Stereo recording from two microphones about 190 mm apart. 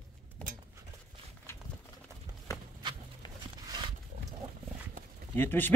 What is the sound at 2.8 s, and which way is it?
Horse, 25° right (ahead or behind).